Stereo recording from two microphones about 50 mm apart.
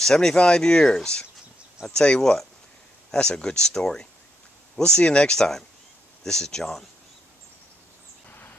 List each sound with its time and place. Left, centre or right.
0.0 s speech: centre